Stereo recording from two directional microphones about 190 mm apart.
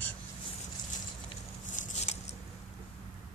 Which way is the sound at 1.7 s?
40° left (ahead or behind).